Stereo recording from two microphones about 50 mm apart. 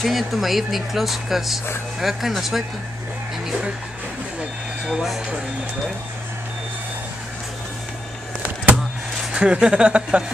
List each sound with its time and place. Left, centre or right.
0.0 s speech: centre
4.8 s speech: centre
9.3 s speech: centre